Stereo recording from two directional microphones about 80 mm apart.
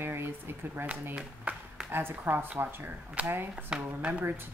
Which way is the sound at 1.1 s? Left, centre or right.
Centre.